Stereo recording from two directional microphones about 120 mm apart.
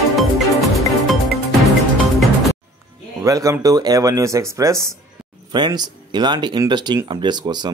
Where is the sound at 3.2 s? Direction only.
25° right (ahead or behind).